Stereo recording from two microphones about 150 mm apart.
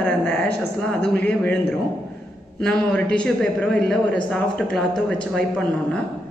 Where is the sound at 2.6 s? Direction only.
5° left (ahead or behind).